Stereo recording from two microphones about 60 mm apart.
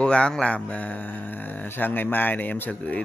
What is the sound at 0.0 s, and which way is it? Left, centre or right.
Speech, centre.